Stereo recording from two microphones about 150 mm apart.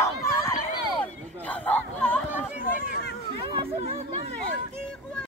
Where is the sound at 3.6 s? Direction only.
40° right (ahead or behind).